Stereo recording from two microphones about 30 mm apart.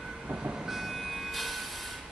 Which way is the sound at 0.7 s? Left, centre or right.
Centre.